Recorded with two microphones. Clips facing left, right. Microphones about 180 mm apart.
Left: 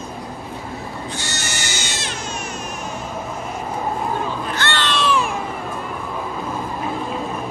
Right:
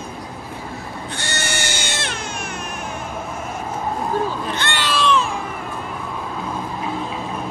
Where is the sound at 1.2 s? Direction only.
55° right (ahead or behind).